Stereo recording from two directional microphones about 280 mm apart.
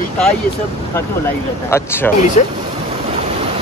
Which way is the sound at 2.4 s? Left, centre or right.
Left.